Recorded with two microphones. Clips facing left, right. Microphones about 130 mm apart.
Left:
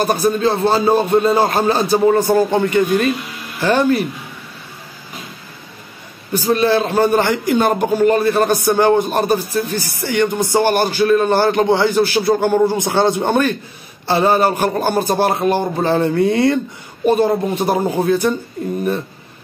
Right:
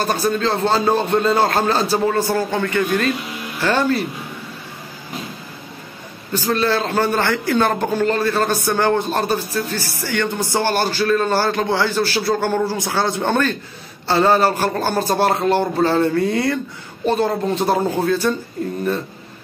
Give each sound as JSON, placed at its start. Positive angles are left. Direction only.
{"t": 0.0, "sound": "a man's voice", "side_deg": 15}
{"t": 6.3, "sound": "a man's voice", "side_deg": 15}
{"t": 17.0, "sound": "a man's voice", "side_deg": 15}